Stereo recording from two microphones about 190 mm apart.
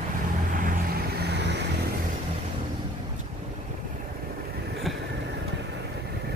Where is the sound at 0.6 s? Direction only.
50° right (ahead or behind).